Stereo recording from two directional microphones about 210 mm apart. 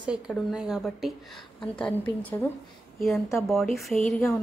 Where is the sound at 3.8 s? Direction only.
Centre (ahead or behind).